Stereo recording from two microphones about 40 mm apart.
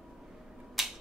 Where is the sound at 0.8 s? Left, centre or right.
Centre.